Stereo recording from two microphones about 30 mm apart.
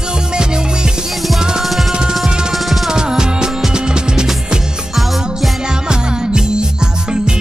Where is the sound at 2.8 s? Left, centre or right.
Right.